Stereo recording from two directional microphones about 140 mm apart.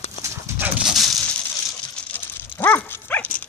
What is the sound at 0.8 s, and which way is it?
Dog, centre (ahead or behind).